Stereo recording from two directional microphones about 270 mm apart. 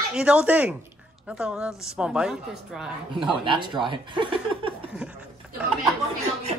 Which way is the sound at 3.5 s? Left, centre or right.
Centre.